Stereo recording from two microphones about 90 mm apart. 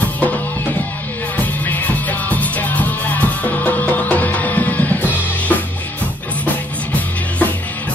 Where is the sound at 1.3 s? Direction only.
20° left (ahead or behind).